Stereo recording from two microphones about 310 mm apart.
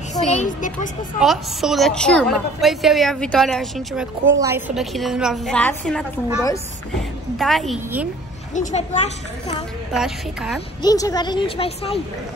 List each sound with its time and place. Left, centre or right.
0.1 s a woman's voice: left
1.2 s a woman's voice: centre
8.5 s a woman's voice: left
9.9 s a woman's voice: centre
10.8 s a woman's voice: centre